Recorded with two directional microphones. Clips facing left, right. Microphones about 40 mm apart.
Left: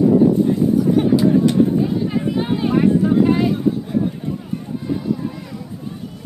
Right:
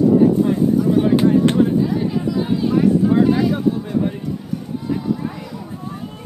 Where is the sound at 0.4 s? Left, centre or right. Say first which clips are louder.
Even; right.